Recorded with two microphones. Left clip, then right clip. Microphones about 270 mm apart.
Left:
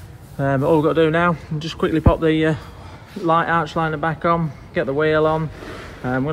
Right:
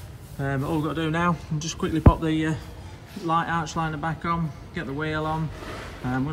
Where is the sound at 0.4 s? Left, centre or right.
Left.